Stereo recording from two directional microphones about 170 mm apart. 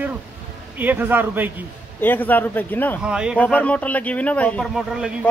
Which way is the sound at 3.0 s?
5° right (ahead or behind).